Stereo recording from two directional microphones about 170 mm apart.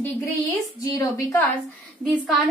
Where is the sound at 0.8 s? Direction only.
20° left (ahead or behind).